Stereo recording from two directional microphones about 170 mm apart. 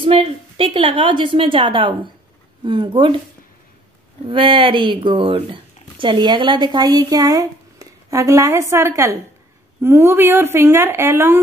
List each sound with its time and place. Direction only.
0.0 s a woman's voice: 35° right (ahead or behind)
4.3 s speech: 30° right (ahead or behind); by 11.4 s 15° right (ahead or behind)